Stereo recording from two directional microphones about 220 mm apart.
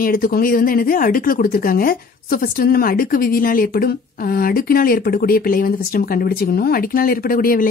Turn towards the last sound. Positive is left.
turn(degrees=40)  # may be behind; listen again after turning